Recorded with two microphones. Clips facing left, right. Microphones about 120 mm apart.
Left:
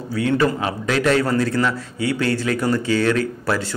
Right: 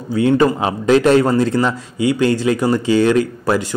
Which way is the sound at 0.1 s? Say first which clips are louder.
Right 5 dB; 25° right (ahead or behind).